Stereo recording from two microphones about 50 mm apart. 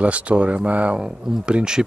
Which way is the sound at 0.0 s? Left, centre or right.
Right.